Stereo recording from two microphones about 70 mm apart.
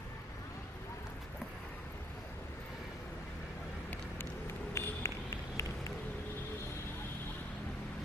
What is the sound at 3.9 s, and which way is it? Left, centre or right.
Run, left.